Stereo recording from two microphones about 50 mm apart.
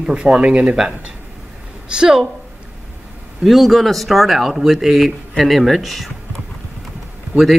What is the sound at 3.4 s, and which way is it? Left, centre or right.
Speech, centre.